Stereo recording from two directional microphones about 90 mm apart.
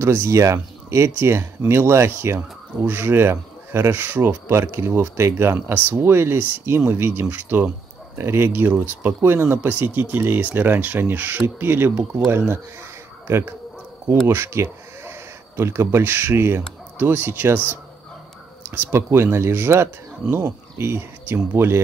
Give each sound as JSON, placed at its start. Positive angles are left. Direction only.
{"t": 0.0, "sound": "speech", "side_deg": -30}
{"t": 18.6, "sound": "speech", "side_deg": -30}